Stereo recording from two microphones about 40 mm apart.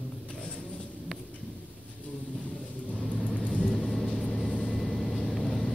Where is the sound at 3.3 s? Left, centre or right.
Left.